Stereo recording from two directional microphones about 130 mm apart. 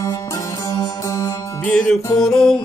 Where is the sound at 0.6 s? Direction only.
30° left (ahead or behind).